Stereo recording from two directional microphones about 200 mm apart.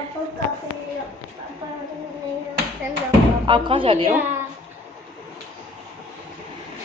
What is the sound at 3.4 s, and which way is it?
Speech, 25° right (ahead or behind).